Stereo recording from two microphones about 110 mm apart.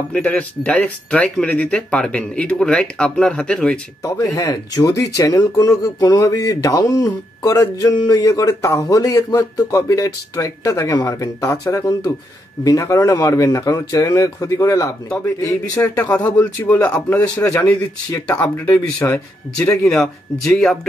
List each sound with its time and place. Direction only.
0.1 s speech: 10° left (ahead or behind)
4.4 s speech: 30° left (ahead or behind)
15.8 s speech: 15° left (ahead or behind)